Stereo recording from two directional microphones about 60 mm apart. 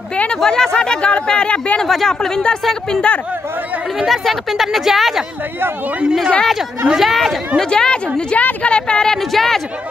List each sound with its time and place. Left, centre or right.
0.4 s speech: centre
1.8 s speech: centre
4.1 s a woman's voice: centre
7.0 s a woman's voice: centre
7.7 s speech: centre